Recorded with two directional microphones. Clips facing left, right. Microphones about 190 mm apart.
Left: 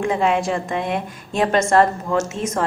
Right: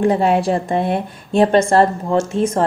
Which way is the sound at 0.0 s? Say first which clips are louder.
Right 4 dB; 35° right (ahead or behind).